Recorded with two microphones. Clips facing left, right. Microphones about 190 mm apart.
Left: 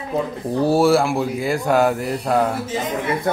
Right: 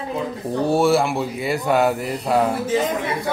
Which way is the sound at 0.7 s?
Centre (ahead or behind).